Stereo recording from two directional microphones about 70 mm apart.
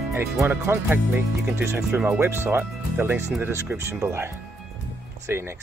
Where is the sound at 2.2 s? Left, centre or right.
Right.